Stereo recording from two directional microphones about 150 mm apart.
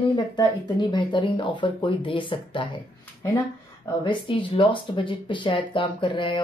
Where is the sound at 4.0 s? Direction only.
35° left (ahead or behind).